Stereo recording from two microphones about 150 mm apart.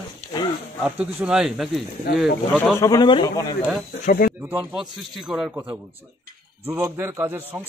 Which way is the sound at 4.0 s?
70° left (ahead or behind).